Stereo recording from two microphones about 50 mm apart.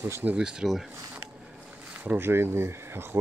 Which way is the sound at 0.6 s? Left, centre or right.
Centre.